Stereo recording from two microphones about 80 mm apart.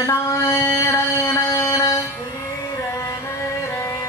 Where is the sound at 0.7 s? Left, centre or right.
Left.